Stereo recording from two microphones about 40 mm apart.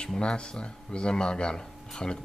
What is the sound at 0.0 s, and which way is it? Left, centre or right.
Speech, left.